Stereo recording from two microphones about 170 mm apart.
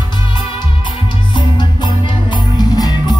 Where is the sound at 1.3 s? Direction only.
25° left (ahead or behind).